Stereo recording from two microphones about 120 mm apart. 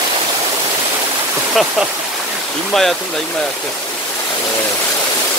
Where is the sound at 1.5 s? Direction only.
Centre (ahead or behind).